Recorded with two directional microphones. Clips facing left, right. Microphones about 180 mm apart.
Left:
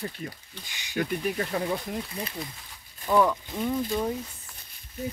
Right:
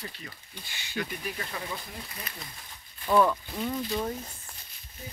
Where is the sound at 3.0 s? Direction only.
10° left (ahead or behind).